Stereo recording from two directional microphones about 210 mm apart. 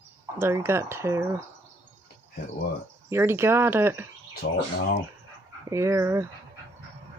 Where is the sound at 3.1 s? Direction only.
10° right (ahead or behind).